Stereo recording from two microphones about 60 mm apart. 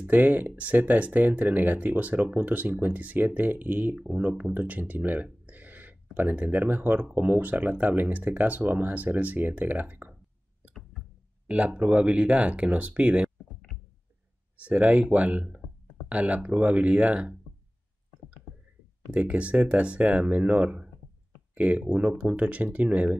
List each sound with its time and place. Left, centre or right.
0.0 s speech: right
4.6 s a sound: right
6.1 s speech: right
11.4 s speech: right
14.6 s speech: right
19.0 s speech: right